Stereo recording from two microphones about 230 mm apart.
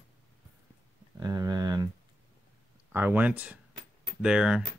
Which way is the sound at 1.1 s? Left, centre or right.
Centre.